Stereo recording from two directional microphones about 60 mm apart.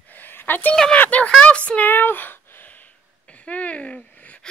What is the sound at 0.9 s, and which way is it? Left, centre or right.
Speech, left.